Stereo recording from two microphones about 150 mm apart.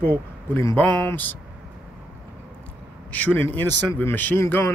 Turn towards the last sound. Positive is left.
turn(degrees=15)  # may be behind; listen again after turning